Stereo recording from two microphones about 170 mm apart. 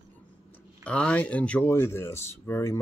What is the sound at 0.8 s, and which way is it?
Speech, 5° left (ahead or behind).